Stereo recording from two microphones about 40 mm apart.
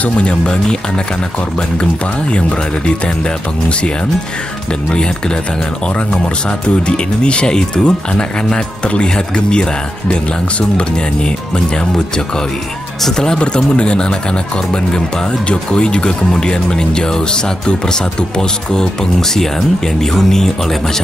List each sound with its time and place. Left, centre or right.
0.0 s speech: left
2.3 s speech: left
4.8 s speech: left
13.0 s speech: centre